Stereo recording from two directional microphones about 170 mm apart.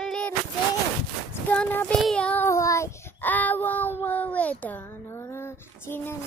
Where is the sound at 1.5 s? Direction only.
10° left (ahead or behind).